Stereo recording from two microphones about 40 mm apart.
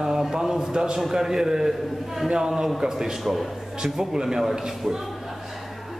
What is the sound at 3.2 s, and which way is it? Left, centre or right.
Speech, centre.